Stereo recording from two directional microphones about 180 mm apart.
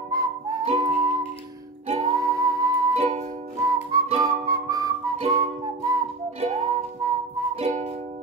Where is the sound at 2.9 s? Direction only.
35° right (ahead or behind).